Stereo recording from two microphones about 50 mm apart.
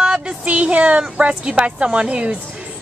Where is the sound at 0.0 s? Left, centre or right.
Right.